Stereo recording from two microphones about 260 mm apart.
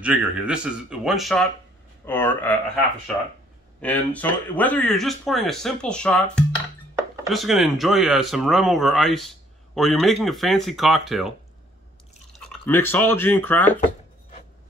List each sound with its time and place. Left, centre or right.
0.0 s speech: centre
3.8 s speech: centre